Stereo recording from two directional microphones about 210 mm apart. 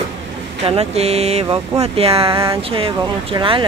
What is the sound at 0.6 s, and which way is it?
Speech, 30° right (ahead or behind).